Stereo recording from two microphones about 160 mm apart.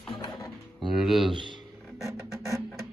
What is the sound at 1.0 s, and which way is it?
Speech, centre (ahead or behind).